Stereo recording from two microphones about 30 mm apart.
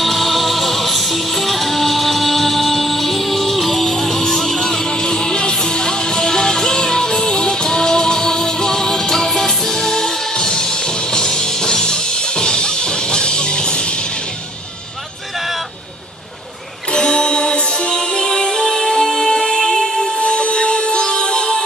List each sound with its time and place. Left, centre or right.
0.0 s music: centre; by 14.0 s left
16.9 s music: left
20.2 s music: left